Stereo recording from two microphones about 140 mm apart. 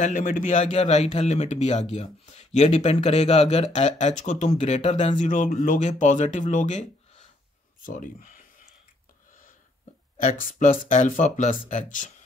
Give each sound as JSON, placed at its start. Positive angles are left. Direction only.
{"t": 0.0, "sound": "a man's voice", "side_deg": 70}
{"t": 7.8, "sound": "speech", "side_deg": 70}
{"t": 10.1, "sound": "a man's voice", "side_deg": 80}